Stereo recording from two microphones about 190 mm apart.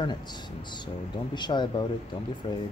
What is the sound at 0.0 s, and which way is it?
Speech, 25° left (ahead or behind).